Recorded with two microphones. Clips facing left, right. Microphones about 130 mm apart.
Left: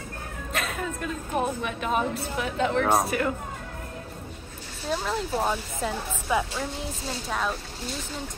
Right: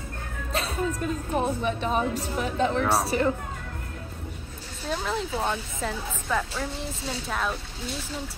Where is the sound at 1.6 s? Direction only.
35° right (ahead or behind).